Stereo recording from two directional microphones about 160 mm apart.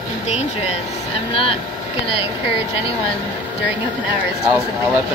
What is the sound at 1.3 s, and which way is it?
Speech, 35° left (ahead or behind).